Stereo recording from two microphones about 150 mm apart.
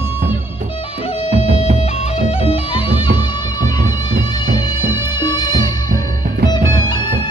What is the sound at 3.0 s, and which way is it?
Music, 30° left (ahead or behind).